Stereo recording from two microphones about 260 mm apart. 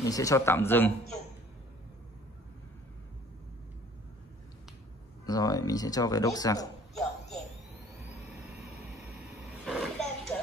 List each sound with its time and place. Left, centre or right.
0.0 s speech: centre
5.2 s speech: centre
9.7 s a sound: centre